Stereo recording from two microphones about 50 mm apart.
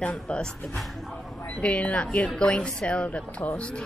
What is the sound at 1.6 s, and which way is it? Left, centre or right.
A woman's voice, left.